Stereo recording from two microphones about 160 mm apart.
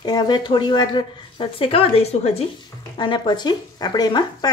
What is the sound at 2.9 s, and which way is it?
Speech, 30° left (ahead or behind).